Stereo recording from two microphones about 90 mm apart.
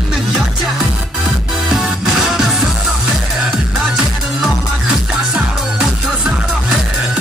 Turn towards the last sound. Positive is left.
turn(degrees=-5)  # may be behind; listen again after turning